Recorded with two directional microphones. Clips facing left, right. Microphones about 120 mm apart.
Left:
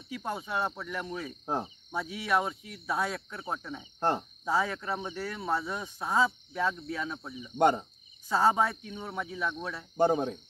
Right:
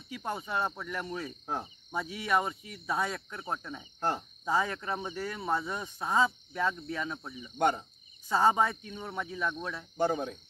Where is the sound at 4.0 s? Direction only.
30° left (ahead or behind).